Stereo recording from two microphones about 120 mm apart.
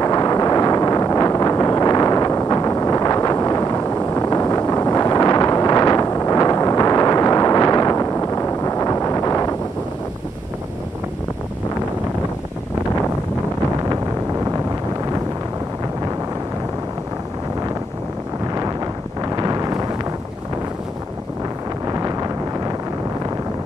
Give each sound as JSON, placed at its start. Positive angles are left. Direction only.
{"t": 0.0, "sound": "wind noise", "side_deg": 30}
{"t": 19.2, "sound": "wind noise", "side_deg": -30}